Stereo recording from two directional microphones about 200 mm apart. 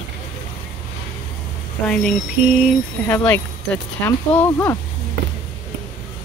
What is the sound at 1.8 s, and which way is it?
Speech, 5° left (ahead or behind).